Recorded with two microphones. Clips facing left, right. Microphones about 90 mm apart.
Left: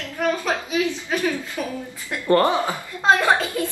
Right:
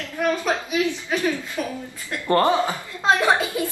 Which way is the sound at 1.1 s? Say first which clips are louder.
Even; 20° left (ahead or behind).